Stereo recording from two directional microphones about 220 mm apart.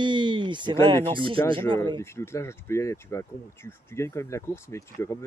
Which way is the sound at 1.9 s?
10° left (ahead or behind).